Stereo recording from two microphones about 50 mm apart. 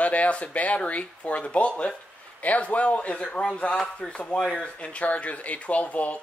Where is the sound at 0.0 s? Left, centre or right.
Left.